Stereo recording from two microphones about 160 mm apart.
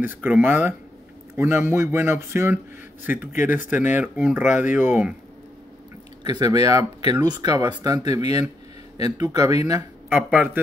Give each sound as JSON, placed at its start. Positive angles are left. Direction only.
{"t": 0.0, "sound": "a man's voice", "side_deg": -10}
{"t": 6.2, "sound": "speech", "side_deg": -25}
{"t": 10.1, "sound": "a man's voice", "side_deg": -10}